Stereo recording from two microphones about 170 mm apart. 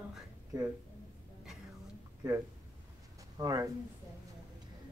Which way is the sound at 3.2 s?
20° right (ahead or behind).